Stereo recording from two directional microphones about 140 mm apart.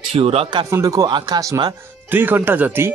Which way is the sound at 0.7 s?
25° right (ahead or behind).